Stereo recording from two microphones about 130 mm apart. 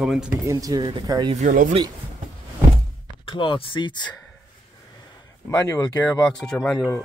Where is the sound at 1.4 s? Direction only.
90° right.